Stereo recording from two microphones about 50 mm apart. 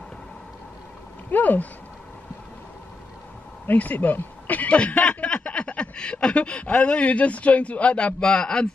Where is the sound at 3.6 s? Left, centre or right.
Left.